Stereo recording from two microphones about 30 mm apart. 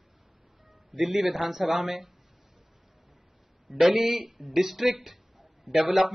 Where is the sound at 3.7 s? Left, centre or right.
Centre.